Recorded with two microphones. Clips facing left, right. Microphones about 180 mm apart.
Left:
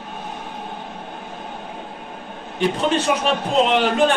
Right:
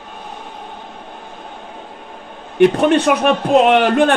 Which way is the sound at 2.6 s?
60° right (ahead or behind).